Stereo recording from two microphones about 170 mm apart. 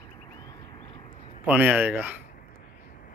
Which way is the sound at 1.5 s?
10° right (ahead or behind).